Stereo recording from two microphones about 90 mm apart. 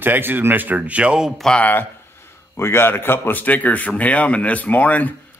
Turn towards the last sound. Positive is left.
turn(degrees=15)  # may be behind; listen again after turning